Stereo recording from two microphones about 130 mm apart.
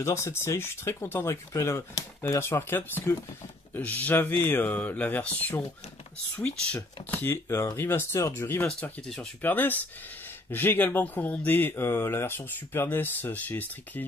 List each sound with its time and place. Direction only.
0.0 s speech: 20° left (ahead or behind)
8.6 s speech: 5° left (ahead or behind)